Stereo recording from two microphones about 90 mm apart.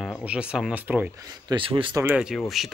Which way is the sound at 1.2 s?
45° right (ahead or behind).